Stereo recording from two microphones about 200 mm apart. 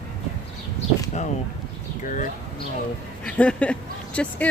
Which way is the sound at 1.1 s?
35° left (ahead or behind).